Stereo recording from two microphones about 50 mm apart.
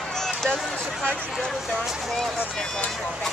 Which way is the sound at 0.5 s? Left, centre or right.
Centre.